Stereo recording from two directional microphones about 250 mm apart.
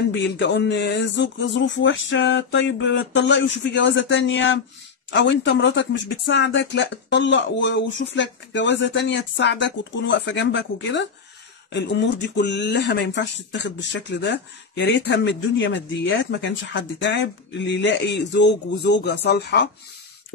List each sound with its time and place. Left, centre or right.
0.1 s speech: left